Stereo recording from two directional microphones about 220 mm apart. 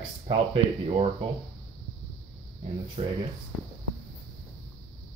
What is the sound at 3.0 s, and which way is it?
Speech, 25° right (ahead or behind).